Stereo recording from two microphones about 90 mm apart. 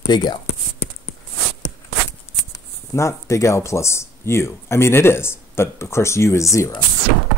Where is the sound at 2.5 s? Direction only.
35° left (ahead or behind).